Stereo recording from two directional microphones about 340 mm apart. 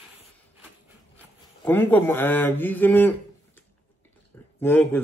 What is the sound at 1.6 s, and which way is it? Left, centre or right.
A man's voice, centre.